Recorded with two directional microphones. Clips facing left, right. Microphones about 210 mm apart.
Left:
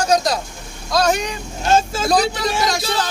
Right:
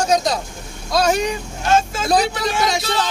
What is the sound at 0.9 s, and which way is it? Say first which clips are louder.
Vehicle: right 1 dB; 5° right (ahead or behind).